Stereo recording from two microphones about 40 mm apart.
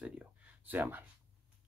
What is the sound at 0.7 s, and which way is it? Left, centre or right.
Speech, right.